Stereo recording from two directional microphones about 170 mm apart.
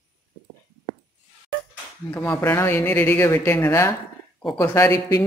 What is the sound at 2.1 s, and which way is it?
Speech, 15° left (ahead or behind).